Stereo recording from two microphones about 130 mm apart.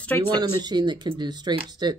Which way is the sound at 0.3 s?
35° right (ahead or behind).